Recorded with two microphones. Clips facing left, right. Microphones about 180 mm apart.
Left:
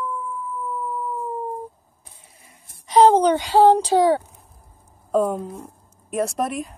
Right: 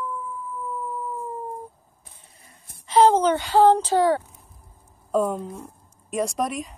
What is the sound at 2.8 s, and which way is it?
Speech, 15° left (ahead or behind).